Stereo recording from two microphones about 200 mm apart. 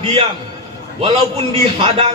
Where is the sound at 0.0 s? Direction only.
30° right (ahead or behind).